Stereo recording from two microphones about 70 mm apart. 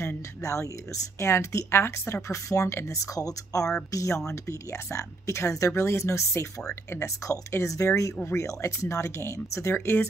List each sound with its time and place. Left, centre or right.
0.4 s speech: left
7.2 s speech: left
9.8 s speech: left